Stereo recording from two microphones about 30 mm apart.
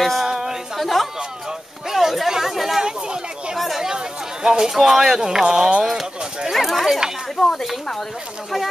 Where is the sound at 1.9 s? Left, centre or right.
Centre.